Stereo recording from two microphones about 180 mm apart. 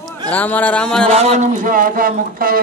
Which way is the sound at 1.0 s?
35° right (ahead or behind).